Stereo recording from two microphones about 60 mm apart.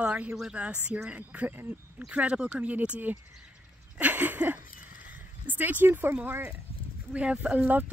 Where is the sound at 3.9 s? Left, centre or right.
Right.